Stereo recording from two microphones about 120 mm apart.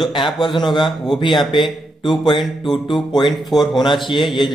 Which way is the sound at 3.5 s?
40° left (ahead or behind).